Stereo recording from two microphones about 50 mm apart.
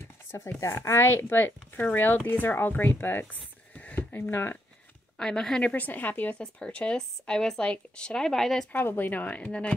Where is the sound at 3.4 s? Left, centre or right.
Left.